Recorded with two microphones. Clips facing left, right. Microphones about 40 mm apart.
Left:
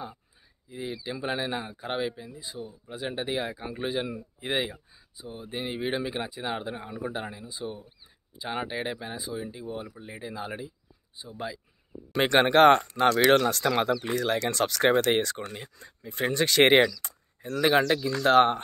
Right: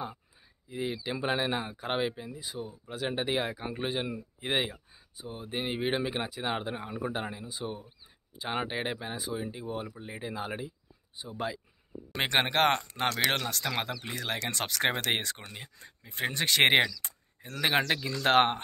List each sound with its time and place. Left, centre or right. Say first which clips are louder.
0.7 s speech: right 1 dB; right
3.7 s speech: left 5 dB; centre
4.9 s speech: left 1 dB; right
9.9 s speech: even; centre; by 11.6 s right
12.1 s speech: left 6 dB; centre
12.4 s speech: left 8 dB; centre
14.1 s speech: left 7 dB; centre
17.0 s speech: left 5 dB; centre
18.2 s speech: left 4 dB; right